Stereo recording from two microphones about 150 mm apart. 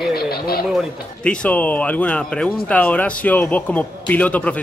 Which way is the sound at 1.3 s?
10° left (ahead or behind).